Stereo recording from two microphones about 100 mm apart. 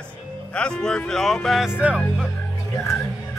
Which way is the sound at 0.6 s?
10° left (ahead or behind).